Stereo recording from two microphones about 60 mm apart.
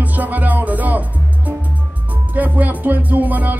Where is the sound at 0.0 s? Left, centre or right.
Right.